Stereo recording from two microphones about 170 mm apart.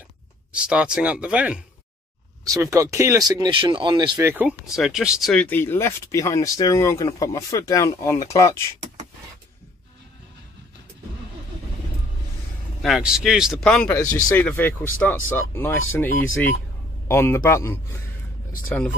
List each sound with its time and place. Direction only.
0.5 s speech: 5° right (ahead or behind)
2.4 s speech: 20° right (ahead or behind)
4.2 s speech: 10° right (ahead or behind)
5.3 s speech: 10° left (ahead or behind)
12.8 s speech: 5° right (ahead or behind); by 17.7 s 15° left (ahead or behind)